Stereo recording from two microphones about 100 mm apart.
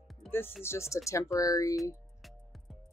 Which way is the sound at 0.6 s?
25° left (ahead or behind).